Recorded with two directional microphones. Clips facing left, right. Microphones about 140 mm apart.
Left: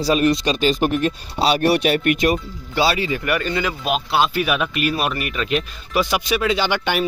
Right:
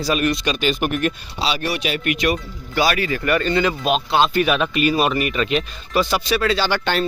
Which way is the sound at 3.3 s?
10° left (ahead or behind).